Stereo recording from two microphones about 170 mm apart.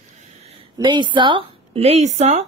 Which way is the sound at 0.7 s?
30° right (ahead or behind).